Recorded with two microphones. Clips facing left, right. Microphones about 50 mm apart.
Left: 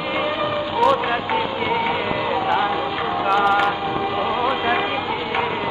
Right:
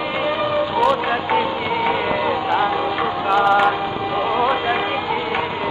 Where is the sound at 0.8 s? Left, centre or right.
Centre.